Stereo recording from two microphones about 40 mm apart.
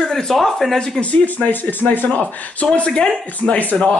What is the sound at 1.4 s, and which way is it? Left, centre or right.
Speech, left.